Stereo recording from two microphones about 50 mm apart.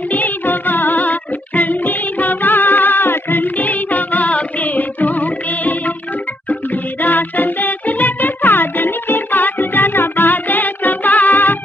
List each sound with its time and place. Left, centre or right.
0.1 s music: left
7.0 s music: left